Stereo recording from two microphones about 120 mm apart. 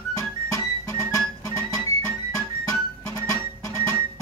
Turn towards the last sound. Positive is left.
turn(degrees=25)  # may be behind; listen again after turning